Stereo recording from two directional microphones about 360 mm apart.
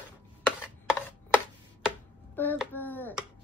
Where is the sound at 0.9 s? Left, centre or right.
Centre.